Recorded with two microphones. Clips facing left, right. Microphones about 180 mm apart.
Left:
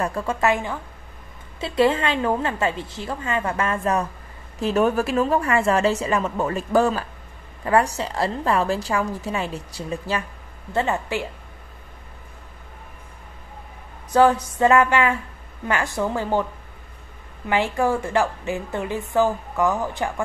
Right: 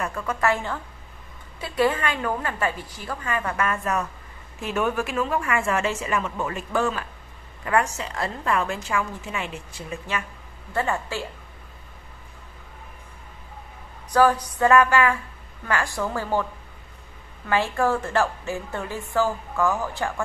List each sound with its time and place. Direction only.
0.0 s a woman's voice: 30° left (ahead or behind)
10.7 s a woman's voice: 20° left (ahead or behind)
14.1 s a woman's voice: 25° left (ahead or behind)
17.5 s a woman's voice: 15° left (ahead or behind)